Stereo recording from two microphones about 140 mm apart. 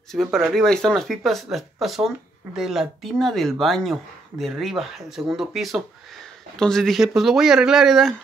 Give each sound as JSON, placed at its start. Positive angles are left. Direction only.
{"t": 0.1, "sound": "speech", "side_deg": 0}